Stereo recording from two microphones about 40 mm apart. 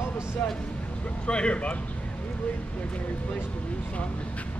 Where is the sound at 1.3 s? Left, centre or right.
Left.